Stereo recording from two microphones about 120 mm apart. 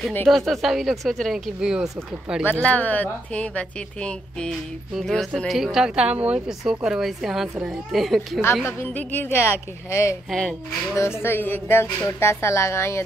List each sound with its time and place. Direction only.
0.3 s a woman's voice: centre (ahead or behind)
2.6 s a woman's voice: 10° left (ahead or behind)
8.6 s speech: 20° left (ahead or behind)